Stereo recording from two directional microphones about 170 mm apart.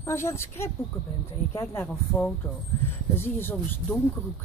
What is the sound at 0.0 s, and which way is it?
Speech, 15° left (ahead or behind).